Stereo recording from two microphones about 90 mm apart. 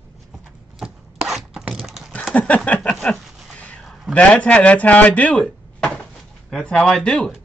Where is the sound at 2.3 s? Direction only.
15° left (ahead or behind).